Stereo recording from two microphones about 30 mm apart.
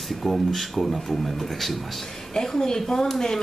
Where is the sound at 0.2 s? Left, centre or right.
Centre.